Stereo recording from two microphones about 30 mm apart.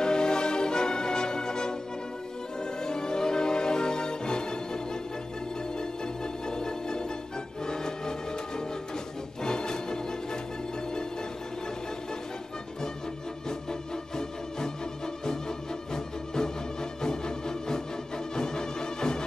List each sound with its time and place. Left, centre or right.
0.0 s music: left
2.8 s music: left
6.4 s music: left
9.4 s music: left
13.5 s music: left
17.0 s music: left